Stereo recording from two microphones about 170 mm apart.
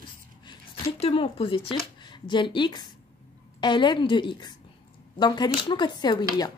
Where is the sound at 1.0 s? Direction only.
35° left (ahead or behind).